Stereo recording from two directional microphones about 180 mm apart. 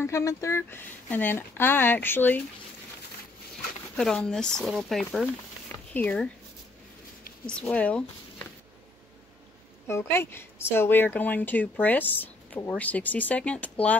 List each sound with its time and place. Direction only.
0.0 s speech: 15° left (ahead or behind)
3.9 s speech: 5° left (ahead or behind)
7.4 s speech: 5° left (ahead or behind)
9.8 s speech: 15° left (ahead or behind)